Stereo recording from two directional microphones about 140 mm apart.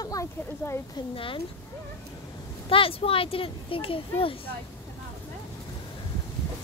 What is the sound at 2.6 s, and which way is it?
Speech, 40° left (ahead or behind).